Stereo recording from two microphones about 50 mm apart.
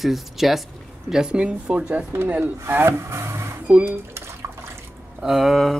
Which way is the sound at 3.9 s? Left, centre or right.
Right.